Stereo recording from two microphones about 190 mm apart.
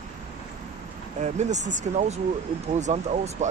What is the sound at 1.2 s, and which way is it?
Speech, 35° right (ahead or behind).